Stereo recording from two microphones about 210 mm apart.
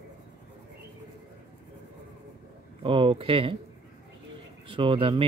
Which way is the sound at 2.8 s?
25° right (ahead or behind).